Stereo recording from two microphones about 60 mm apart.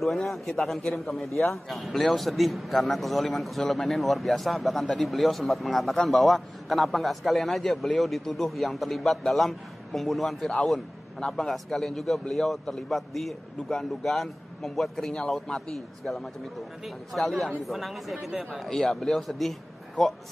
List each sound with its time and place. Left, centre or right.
0.0 s a man's voice: centre
18.3 s speech: centre
18.6 s a man's voice: centre